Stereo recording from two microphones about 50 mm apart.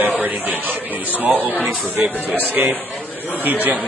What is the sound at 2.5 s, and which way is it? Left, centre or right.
Speech, right.